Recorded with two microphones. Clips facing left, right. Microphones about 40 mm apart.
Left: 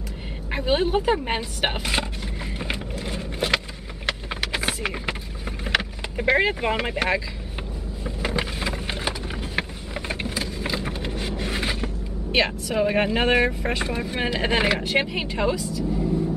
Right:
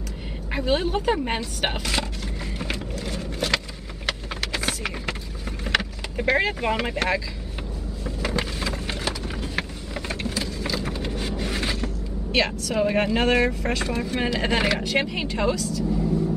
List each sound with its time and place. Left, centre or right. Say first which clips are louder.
0.5 s speech: left 1 dB; centre
2.6 s vehicle: even; centre
5.7 s speech: even; centre
8.0 s a sound: even; centre